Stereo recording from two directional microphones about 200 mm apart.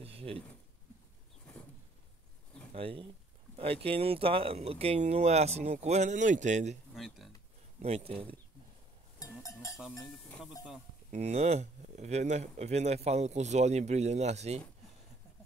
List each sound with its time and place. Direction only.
0.0 s a sound: 30° right (ahead or behind)
2.7 s speech: 25° right (ahead or behind)
7.0 s speech: centre (ahead or behind)
7.8 s speech: 30° right (ahead or behind)
9.2 s a sound: 15° left (ahead or behind)
10.0 s speech: centre (ahead or behind)
11.1 s speech: 35° right (ahead or behind)